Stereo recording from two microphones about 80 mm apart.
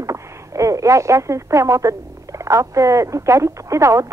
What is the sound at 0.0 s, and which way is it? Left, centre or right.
Speech, right.